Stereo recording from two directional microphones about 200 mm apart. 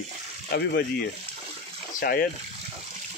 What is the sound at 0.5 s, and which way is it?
Speech, 50° left (ahead or behind).